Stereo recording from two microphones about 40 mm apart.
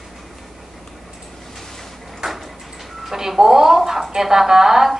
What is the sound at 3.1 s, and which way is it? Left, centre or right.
Speech, centre.